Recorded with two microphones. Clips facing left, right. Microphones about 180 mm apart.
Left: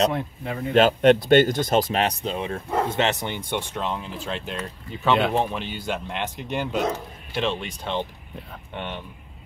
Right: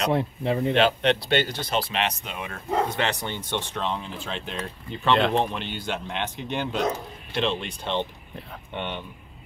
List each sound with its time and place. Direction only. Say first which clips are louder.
0.1 s speech: right 5 dB; 25° right (ahead or behind)
0.7 s speech: left 9 dB; 45° left (ahead or behind); by 9.0 s 5° left (ahead or behind)